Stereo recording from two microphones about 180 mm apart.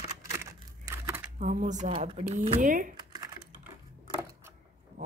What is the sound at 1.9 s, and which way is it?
Speech, 30° right (ahead or behind).